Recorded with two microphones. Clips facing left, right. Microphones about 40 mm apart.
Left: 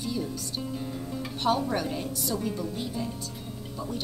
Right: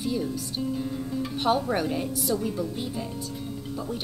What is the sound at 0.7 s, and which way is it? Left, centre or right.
Music, centre.